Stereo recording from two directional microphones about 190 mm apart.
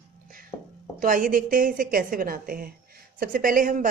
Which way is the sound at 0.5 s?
25° left (ahead or behind).